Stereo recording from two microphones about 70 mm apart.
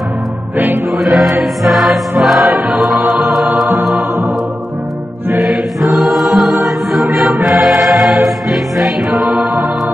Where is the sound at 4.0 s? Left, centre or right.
Right.